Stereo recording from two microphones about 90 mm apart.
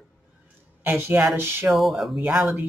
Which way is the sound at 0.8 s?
20° right (ahead or behind).